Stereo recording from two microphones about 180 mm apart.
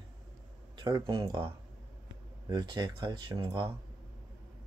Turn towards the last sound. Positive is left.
turn(degrees=-25)  # may be behind; listen again after turning